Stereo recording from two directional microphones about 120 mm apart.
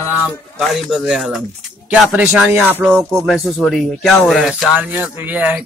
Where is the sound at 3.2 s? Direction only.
Centre (ahead or behind).